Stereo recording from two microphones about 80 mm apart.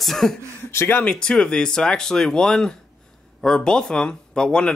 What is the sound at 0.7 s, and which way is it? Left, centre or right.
Speech, left.